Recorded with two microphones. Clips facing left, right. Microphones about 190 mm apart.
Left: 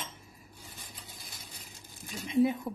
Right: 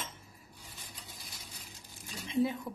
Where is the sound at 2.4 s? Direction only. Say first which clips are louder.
Left 4 dB; 30° left (ahead or behind).